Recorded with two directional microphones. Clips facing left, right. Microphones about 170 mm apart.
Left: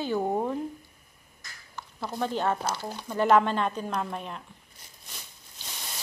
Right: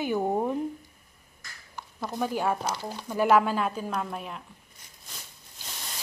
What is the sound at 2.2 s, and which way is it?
A woman's voice, 10° right (ahead or behind).